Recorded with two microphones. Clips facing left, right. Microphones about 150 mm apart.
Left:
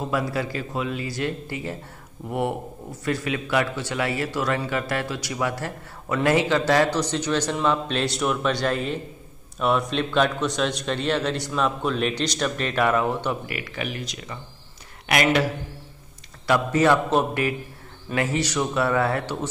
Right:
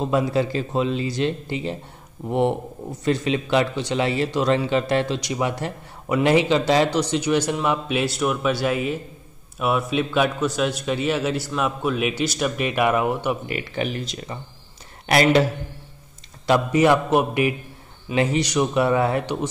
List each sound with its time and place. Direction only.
0.0 s a man's voice: 25° right (ahead or behind)
13.5 s speech: 30° right (ahead or behind)
16.4 s a man's voice: 20° right (ahead or behind)